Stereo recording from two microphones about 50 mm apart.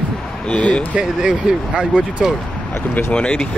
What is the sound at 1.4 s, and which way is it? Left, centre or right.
Speech, centre.